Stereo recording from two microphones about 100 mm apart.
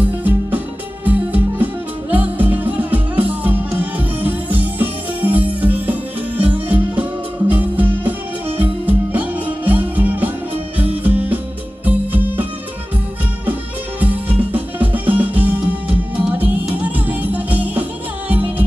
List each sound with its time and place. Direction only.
0.0 s music: 15° right (ahead or behind)
13.5 s music: 15° right (ahead or behind)